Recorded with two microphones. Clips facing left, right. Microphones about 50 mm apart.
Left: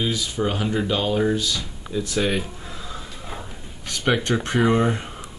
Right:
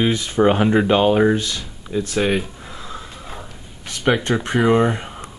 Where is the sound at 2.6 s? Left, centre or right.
Centre.